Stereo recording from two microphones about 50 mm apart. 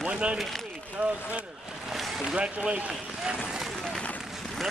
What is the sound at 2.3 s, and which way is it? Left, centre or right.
Speech, right.